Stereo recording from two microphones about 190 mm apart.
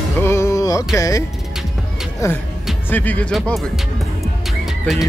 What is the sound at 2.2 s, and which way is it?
Speech, 15° left (ahead or behind).